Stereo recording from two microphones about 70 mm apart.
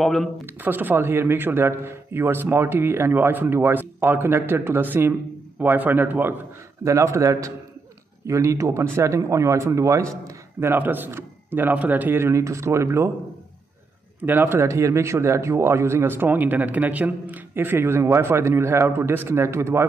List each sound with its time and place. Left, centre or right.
0.0 s speech: centre
0.6 s a man's voice: right
6.8 s speech: right
10.6 s speech: right
14.2 s speech: right
14.7 s speech: right